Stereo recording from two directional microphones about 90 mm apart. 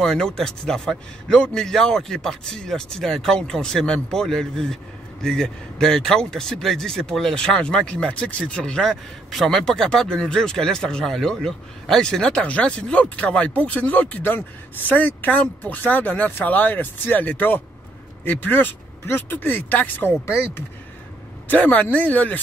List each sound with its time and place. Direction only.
0.0 s a man's voice: 5° left (ahead or behind); by 22.4 s 20° left (ahead or behind)